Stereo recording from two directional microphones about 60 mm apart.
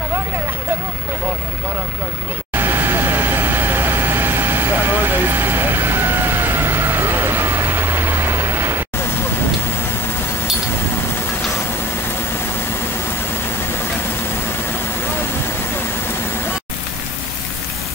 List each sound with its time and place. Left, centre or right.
2.5 s vehicle: right